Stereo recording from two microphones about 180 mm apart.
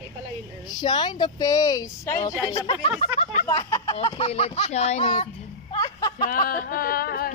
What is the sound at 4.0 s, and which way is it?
Speech, 30° left (ahead or behind).